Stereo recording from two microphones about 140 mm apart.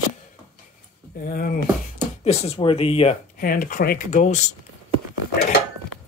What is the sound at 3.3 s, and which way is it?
Speech, 85° left.